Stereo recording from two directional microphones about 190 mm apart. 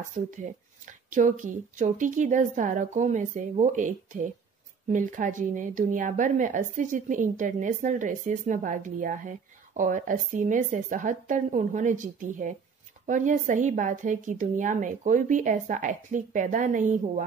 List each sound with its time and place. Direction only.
0.0 s a woman's voice: 40° right (ahead or behind)